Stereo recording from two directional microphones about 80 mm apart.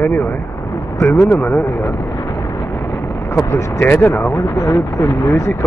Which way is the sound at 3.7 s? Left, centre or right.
Left.